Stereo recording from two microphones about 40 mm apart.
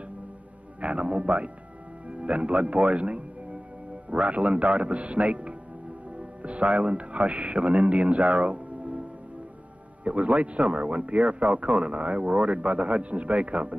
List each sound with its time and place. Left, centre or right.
0.7 s speech: right
10.0 s speech: right